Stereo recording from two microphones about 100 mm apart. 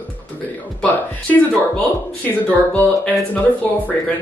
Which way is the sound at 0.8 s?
15° left (ahead or behind).